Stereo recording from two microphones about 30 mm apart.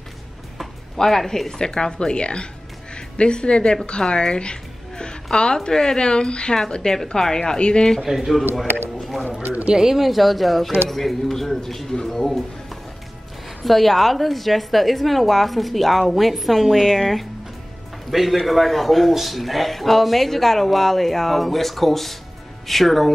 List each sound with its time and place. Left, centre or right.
1.0 s speech: centre
1.6 s a woman's voice: left
8.0 s a man's voice: centre
8.3 s speech: centre
9.8 s a man's voice: centre
10.0 s speech: centre
13.7 s speech: centre